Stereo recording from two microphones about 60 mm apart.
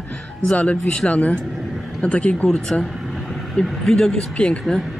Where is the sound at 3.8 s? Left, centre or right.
Centre.